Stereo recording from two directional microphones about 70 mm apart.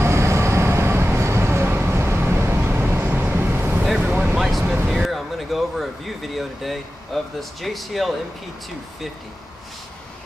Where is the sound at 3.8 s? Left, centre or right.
Centre.